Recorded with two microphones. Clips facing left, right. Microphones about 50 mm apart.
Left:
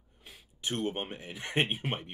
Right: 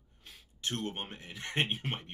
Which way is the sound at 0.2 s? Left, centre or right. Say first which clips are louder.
Left 1 dB; centre.